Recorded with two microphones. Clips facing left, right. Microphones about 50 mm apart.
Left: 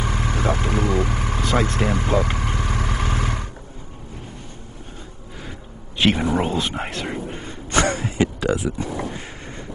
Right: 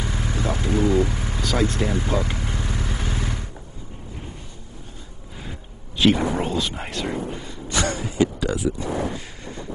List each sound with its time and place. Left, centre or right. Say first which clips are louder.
0.0 s vehicle: left 4 dB; left
1.4 s vehicle: left 1 dB; left
5.9 s a sound: right 1 dB; left
6.3 s whispering: left 3 dB; left
8.2 s a sound: even; left
8.7 s boat: right 1 dB; left